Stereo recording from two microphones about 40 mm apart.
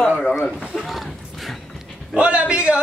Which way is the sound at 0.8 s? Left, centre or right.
Centre.